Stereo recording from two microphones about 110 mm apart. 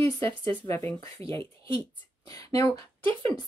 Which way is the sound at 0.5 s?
20° left (ahead or behind).